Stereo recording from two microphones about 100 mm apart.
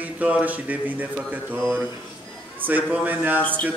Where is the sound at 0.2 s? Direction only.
15° right (ahead or behind).